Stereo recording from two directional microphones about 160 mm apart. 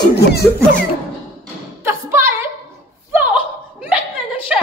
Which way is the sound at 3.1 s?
10° right (ahead or behind).